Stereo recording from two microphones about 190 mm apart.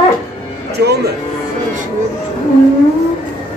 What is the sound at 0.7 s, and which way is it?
Speech, 60° right (ahead or behind).